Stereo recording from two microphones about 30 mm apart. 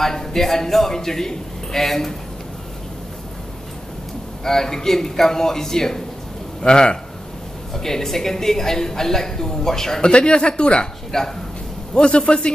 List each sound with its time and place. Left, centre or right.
0.0 s a man's voice: centre
4.5 s a man's voice: centre
7.7 s a man's voice: centre
10.0 s speech: left
11.1 s speech: centre
11.9 s a man's voice: left